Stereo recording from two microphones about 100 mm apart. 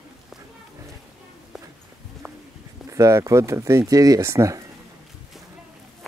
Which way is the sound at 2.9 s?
30° right (ahead or behind).